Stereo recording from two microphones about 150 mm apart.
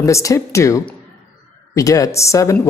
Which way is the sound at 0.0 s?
20° left (ahead or behind).